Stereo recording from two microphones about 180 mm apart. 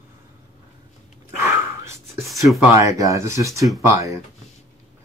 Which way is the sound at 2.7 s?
20° right (ahead or behind).